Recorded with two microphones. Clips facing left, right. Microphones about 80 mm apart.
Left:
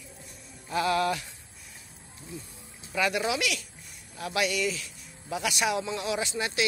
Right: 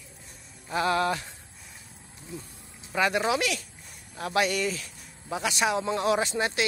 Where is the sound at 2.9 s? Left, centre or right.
Right.